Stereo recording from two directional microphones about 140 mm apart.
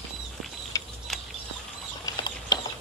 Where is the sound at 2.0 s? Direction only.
25° left (ahead or behind).